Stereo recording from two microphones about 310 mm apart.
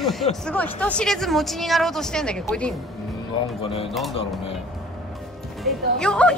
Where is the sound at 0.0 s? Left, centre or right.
Centre.